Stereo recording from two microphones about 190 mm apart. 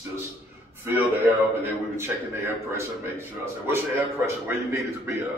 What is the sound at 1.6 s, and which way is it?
A man's voice, 10° right (ahead or behind).